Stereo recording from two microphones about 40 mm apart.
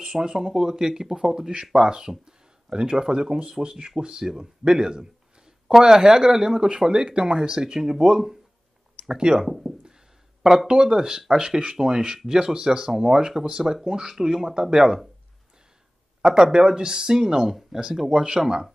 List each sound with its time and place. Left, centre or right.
0.0 s speech: centre
16.2 s speech: centre
18.1 s speech: right